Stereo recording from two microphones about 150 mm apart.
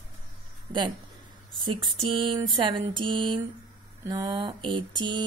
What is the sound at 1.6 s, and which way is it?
A woman's voice, 35° right (ahead or behind).